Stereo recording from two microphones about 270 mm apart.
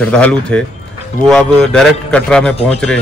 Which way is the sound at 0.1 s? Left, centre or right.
Centre.